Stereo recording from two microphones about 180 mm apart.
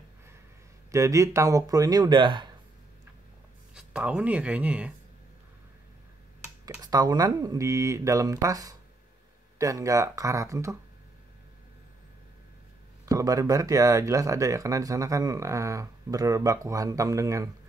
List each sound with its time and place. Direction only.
0.9 s speech: 15° right (ahead or behind)
3.7 s speech: 5° right (ahead or behind)
6.4 s speech: 15° right (ahead or behind)
13.0 s speech: 20° right (ahead or behind)